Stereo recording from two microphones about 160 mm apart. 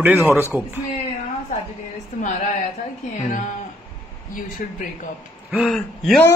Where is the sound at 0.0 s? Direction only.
15° right (ahead or behind).